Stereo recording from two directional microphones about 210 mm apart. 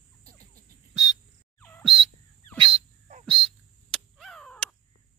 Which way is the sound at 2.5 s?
25° right (ahead or behind).